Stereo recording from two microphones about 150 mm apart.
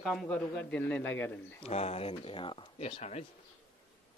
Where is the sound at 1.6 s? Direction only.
45° left (ahead or behind).